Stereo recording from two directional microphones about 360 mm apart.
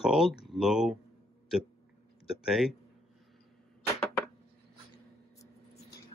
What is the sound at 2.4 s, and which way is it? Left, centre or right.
Speech, centre.